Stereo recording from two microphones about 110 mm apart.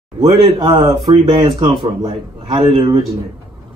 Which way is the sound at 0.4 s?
50° right (ahead or behind).